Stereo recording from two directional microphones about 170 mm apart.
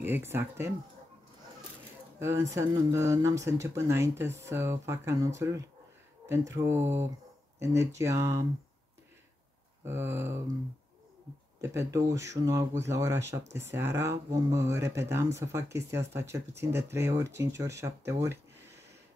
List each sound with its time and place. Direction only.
0.0 s speech: 15° right (ahead or behind)
2.1 s speech: 15° right (ahead or behind)
9.8 s speech: 15° right (ahead or behind)
11.6 s speech: 15° right (ahead or behind)